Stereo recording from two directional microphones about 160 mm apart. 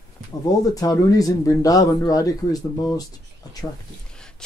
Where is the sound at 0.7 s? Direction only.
20° left (ahead or behind).